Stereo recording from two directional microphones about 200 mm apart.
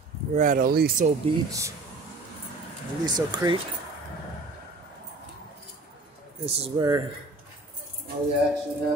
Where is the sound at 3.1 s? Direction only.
20° right (ahead or behind).